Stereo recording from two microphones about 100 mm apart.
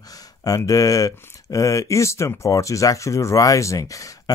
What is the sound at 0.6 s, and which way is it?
A man's voice, 35° left (ahead or behind).